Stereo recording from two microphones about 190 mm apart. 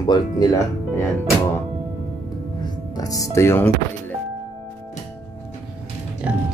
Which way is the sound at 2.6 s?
20° left (ahead or behind).